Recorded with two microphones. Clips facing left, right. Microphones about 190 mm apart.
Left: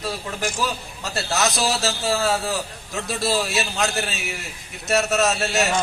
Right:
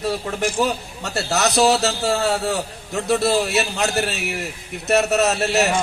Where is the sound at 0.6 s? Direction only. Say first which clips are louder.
Right 5 dB; 65° right (ahead or behind).